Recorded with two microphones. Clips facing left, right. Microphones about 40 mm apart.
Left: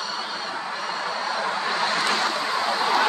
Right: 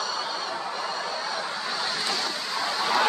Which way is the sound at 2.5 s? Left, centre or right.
Left.